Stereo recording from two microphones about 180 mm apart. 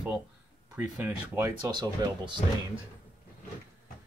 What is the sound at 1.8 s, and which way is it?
Speech, 25° right (ahead or behind).